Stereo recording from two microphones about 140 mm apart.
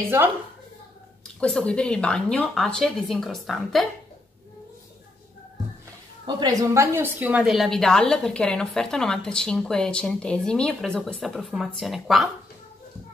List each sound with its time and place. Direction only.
1.4 s a woman's voice: 5° left (ahead or behind)
6.2 s a woman's voice: 20° right (ahead or behind)
7.4 s a woman's voice: centre (ahead or behind)